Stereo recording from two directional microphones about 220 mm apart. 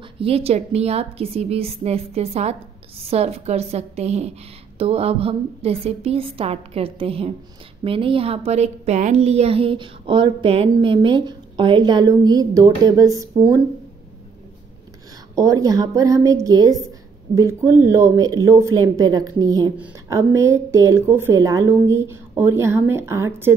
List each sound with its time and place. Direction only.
0.2 s a woman's voice: 25° right (ahead or behind)
15.3 s a woman's voice: 15° right (ahead or behind)